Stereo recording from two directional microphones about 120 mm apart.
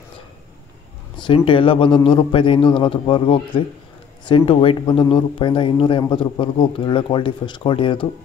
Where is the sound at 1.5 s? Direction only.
45° left (ahead or behind).